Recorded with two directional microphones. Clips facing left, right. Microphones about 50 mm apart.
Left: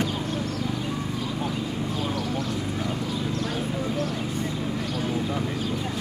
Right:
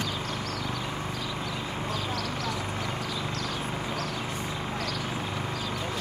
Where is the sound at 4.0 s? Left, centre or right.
Right.